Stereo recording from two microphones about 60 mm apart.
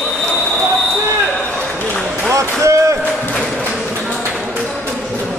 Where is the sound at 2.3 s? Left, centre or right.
Right.